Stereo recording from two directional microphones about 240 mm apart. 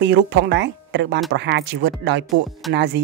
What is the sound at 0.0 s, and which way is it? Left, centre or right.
Speech, right.